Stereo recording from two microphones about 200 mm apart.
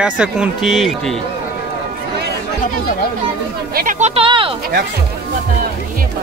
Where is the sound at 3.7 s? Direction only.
45° right (ahead or behind).